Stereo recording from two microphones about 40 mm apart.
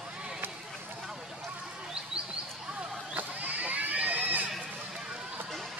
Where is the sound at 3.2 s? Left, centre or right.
Right.